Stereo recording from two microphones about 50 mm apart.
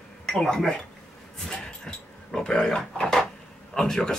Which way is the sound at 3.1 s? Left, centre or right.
Centre.